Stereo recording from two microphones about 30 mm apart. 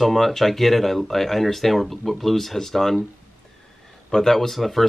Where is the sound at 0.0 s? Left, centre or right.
Centre.